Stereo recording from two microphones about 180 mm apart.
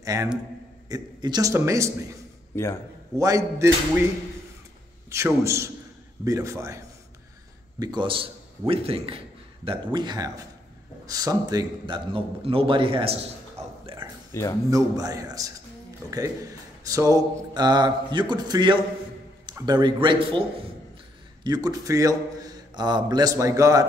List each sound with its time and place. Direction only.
0.0 s a man's voice: 20° right (ahead or behind)
2.5 s speech: 15° left (ahead or behind)
3.2 s a man's voice: 20° right (ahead or behind)
5.1 s a man's voice: 15° right (ahead or behind)
7.8 s a man's voice: 25° right (ahead or behind)
14.3 s speech: 15° left (ahead or behind)
14.7 s a man's voice: 20° right (ahead or behind)
16.8 s a man's voice: 20° right (ahead or behind)
21.5 s a man's voice: 20° right (ahead or behind)